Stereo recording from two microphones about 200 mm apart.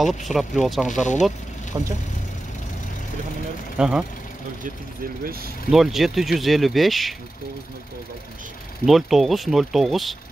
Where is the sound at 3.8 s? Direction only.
5° right (ahead or behind).